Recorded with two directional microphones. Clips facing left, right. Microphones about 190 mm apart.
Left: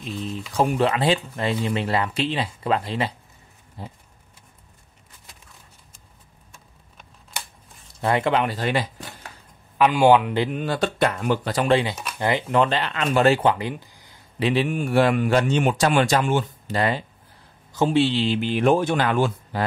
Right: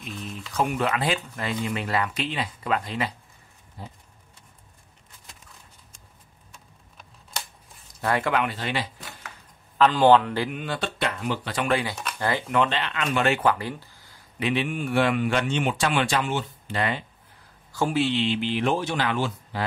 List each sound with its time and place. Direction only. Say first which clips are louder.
0.2 s speech: left 4 dB; 30° left (ahead or behind)
7.9 s speech: left 3 dB; 25° left (ahead or behind)
8.5 s a man's voice: left 5 dB; 40° left (ahead or behind)
9.8 s a man's voice: left 1 dB; 10° left (ahead or behind)
10.5 s a man's voice: left 6 dB; 40° left (ahead or behind)
11.7 s speech: left 6 dB; 25° left (ahead or behind)
12.5 s a man's voice: left 3 dB; 40° left (ahead or behind)
13.4 s speech: left 2 dB; 20° left (ahead or behind)
14.4 s a man's voice: left 4 dB; 35° left (ahead or behind)
17.7 s speech: left 4 dB; 25° left (ahead or behind); by 19.6 s 50° left (ahead or behind)